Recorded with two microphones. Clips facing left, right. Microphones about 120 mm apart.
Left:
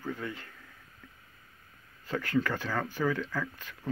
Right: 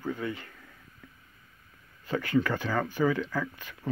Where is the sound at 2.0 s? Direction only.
5° right (ahead or behind).